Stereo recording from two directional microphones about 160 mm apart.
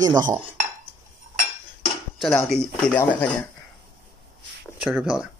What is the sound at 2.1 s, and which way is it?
Speech, centre (ahead or behind).